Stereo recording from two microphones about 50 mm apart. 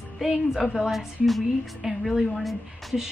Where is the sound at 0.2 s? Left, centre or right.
Centre.